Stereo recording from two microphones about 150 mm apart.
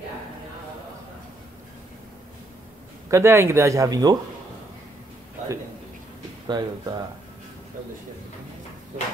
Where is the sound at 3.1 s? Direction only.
15° right (ahead or behind).